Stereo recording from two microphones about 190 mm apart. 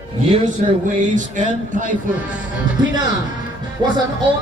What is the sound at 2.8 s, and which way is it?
Speech, 20° right (ahead or behind).